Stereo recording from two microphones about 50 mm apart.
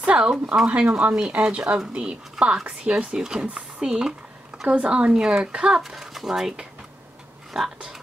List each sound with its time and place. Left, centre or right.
0.0 s speech: centre
0.7 s speech: right
4.6 s speech: right
5.8 s speech: centre
7.5 s speech: centre